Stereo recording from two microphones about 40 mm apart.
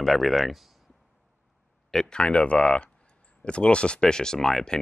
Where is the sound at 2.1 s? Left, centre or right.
Left.